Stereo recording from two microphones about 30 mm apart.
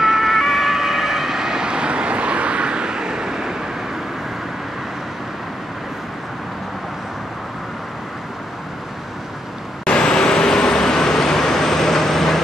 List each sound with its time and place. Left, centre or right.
0.0 s emergency vehicle: centre
9.8 s vehicle: left; by 12.4 s centre